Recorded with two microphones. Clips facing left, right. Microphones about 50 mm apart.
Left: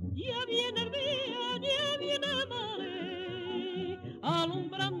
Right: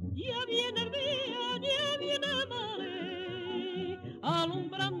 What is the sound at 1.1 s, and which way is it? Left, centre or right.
Music, right.